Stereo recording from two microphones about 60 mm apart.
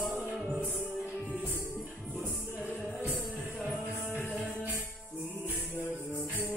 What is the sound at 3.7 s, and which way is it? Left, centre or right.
Music, right.